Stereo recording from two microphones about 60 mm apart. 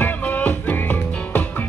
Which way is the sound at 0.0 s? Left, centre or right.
Left.